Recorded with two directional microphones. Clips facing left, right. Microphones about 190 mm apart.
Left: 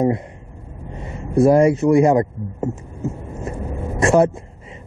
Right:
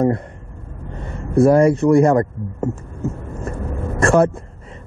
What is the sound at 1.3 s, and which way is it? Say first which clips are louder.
A man's voice: right 1 dB; 20° left (ahead or behind).